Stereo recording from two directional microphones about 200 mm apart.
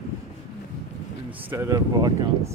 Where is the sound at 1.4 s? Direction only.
15° right (ahead or behind).